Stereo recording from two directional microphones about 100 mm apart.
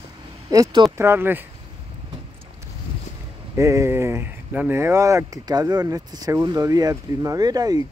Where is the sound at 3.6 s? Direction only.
30° right (ahead or behind).